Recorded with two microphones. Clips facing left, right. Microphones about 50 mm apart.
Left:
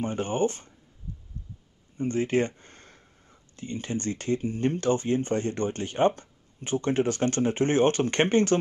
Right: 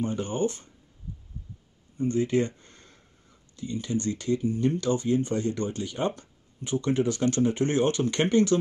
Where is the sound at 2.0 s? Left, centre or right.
Left.